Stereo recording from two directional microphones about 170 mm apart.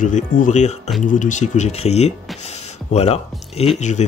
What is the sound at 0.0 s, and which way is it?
Speech, 45° left (ahead or behind).